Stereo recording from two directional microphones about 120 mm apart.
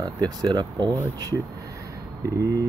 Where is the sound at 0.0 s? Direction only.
35° right (ahead or behind).